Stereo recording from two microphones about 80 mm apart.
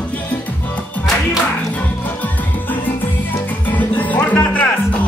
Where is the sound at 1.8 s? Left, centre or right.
Left.